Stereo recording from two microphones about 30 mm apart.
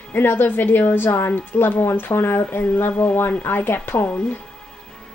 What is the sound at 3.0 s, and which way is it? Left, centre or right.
Speech, left.